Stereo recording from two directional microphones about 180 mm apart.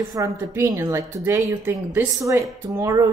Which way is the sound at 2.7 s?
20° right (ahead or behind).